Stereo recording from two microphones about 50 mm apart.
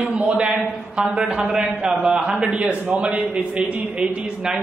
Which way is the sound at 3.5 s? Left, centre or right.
Centre.